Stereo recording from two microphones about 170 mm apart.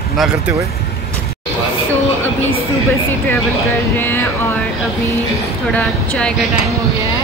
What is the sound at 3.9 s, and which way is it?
Music, 10° left (ahead or behind).